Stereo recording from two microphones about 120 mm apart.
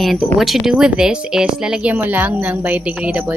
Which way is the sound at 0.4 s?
Centre (ahead or behind).